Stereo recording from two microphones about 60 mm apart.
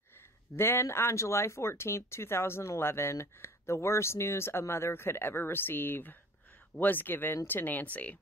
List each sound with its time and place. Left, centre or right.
0.6 s speech: left